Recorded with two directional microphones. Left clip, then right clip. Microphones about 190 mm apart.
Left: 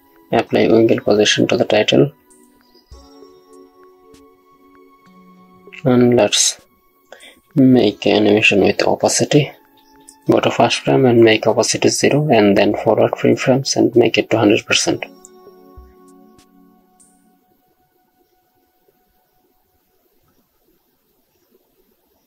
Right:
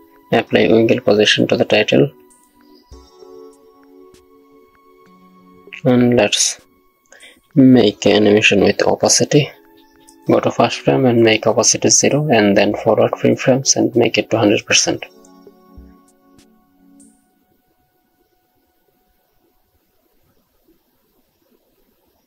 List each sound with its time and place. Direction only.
0.3 s speech: 15° right (ahead or behind)
2.2 s music: centre (ahead or behind)
5.7 s speech: 15° right (ahead or behind)
7.1 s a sound: 15° right (ahead or behind)
7.7 s speech: 20° right (ahead or behind)